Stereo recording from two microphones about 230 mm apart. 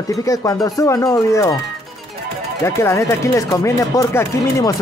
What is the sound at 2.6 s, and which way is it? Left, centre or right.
Speech, centre.